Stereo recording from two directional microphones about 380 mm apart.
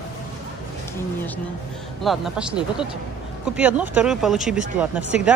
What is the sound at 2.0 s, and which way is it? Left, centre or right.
Speech, centre.